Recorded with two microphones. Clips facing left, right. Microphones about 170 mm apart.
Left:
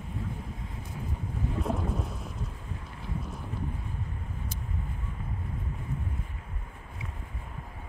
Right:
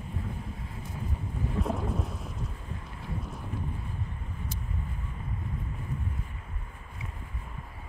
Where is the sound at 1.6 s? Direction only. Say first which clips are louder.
Even; centre (ahead or behind).